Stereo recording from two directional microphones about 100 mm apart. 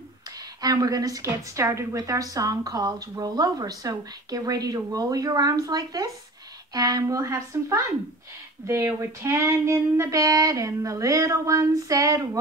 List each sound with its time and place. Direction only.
0.6 s a woman's voice: 40° right (ahead or behind)